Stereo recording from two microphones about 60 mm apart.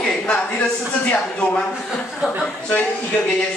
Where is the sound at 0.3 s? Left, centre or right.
Left.